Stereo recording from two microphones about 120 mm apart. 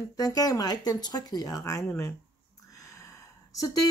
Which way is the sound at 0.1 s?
30° left (ahead or behind).